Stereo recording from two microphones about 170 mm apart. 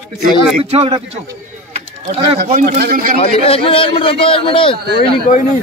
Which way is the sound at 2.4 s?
55° right (ahead or behind).